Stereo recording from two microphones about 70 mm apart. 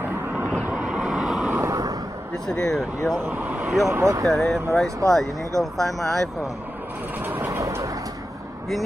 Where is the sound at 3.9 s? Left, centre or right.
Right.